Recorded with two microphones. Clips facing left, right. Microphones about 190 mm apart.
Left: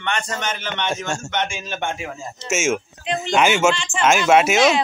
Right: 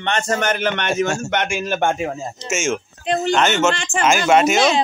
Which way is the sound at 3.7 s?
60° right (ahead or behind).